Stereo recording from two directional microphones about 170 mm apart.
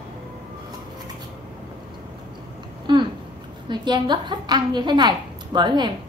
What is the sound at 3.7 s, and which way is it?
A woman's voice, 25° right (ahead or behind).